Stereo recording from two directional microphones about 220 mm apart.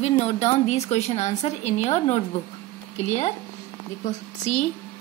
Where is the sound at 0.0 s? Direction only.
30° left (ahead or behind).